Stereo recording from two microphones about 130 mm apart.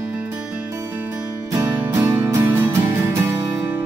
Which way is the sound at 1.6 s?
15° right (ahead or behind).